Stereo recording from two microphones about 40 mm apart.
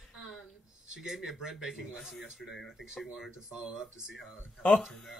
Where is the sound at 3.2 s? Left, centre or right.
Centre.